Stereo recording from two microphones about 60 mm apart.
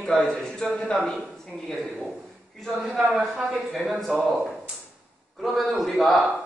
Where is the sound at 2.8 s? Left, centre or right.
Right.